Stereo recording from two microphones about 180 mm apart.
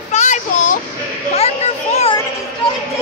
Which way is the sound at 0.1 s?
40° left (ahead or behind).